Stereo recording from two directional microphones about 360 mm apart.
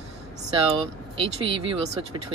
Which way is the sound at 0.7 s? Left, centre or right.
Centre.